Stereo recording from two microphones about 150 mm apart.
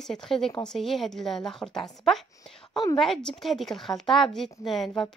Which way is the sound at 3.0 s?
5° left (ahead or behind).